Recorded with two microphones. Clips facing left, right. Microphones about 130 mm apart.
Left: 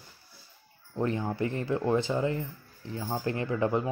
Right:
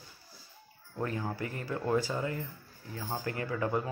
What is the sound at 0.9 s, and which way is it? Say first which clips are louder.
Speech: left 5 dB; 25° left (ahead or behind).